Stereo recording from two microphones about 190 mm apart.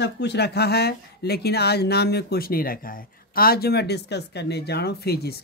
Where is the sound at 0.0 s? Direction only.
60° left (ahead or behind).